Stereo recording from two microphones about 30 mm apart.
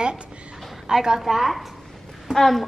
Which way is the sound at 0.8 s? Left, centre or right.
Centre.